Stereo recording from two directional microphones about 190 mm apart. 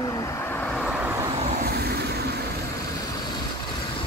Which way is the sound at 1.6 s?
55° right (ahead or behind).